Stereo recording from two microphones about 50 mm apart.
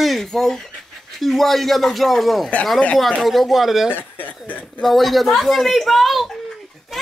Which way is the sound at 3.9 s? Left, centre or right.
Left.